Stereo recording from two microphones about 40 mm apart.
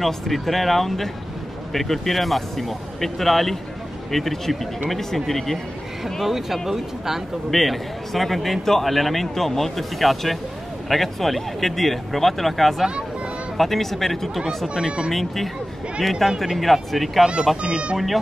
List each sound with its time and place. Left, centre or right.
0.0 s a man's voice: centre
17.6 s a child's voice: right
17.9 s a man's voice: centre